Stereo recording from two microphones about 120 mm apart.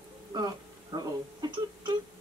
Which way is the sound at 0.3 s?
35° right (ahead or behind).